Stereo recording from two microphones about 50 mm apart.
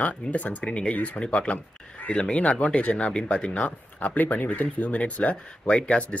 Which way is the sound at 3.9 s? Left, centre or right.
Left.